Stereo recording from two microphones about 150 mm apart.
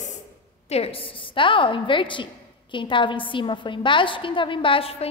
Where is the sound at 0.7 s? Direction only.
40° left (ahead or behind).